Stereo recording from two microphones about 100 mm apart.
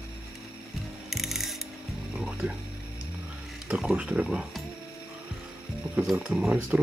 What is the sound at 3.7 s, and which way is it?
Speech, 10° right (ahead or behind).